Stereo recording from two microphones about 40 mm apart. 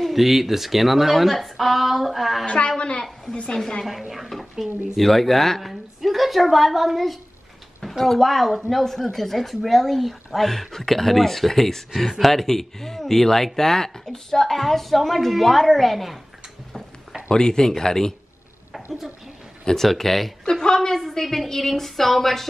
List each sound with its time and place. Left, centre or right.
0.0 s speech: centre
2.4 s a woman's voice: left
3.4 s speech: centre
4.1 s a woman's voice: centre
17.3 s speech: centre
18.7 s a sound: centre
19.6 s speech: centre